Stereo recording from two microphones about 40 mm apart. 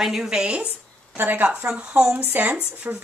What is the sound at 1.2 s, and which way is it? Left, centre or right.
Speech, right.